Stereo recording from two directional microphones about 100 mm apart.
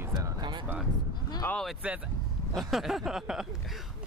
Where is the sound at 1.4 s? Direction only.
20° left (ahead or behind).